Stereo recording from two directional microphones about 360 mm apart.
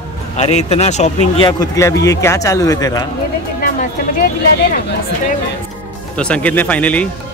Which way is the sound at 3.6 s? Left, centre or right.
Left.